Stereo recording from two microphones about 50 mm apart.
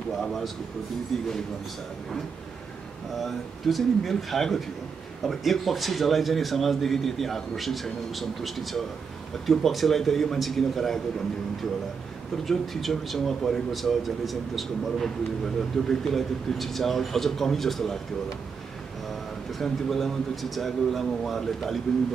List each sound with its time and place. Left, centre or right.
0.2 s speech: centre
3.2 s speech: centre
12.4 s speech: centre
19.6 s speech: centre